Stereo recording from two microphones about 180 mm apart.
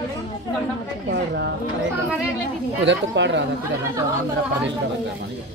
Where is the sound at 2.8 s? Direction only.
85° right.